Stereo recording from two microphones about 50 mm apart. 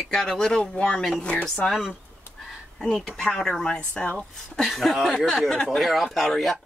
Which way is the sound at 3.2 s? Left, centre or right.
Centre.